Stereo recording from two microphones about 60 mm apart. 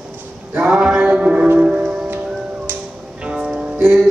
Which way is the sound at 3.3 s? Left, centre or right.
Centre.